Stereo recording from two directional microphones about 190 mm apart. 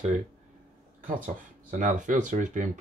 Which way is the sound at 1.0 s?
40° right (ahead or behind).